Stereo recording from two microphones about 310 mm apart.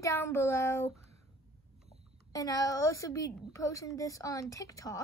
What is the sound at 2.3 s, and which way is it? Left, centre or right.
A woman's voice, centre.